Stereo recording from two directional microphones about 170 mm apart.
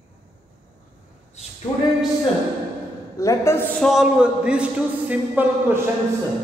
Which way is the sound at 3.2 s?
15° left (ahead or behind).